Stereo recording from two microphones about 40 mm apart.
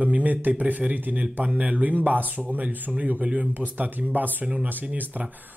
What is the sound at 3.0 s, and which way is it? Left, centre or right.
Speech, right.